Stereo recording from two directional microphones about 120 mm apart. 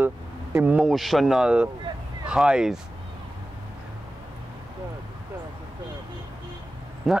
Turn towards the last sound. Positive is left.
turn(degrees=0)  # may be behind; listen again after turning